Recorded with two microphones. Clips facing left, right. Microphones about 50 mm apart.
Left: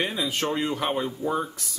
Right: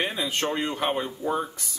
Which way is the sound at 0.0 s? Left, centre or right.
Centre.